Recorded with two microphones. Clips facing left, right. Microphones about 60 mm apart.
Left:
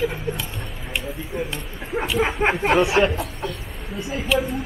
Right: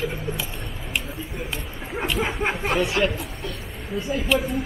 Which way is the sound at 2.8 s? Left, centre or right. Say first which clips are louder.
Left 2 dB; centre.